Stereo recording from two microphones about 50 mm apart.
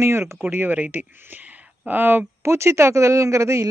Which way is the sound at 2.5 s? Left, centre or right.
Right.